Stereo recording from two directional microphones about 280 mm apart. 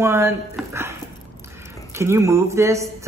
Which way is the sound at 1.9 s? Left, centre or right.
Centre.